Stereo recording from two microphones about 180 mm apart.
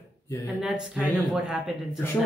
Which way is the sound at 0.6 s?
5° right (ahead or behind).